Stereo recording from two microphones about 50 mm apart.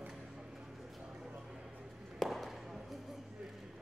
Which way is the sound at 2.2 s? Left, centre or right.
Centre.